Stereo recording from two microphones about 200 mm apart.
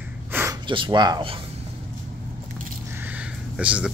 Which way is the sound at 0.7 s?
25° right (ahead or behind).